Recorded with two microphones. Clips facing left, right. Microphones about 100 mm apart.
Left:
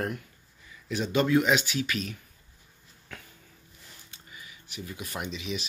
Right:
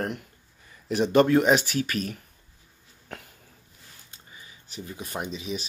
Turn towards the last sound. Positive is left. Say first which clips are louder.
# right 2 dB
turn(degrees=-35)  # may be behind; listen again after turning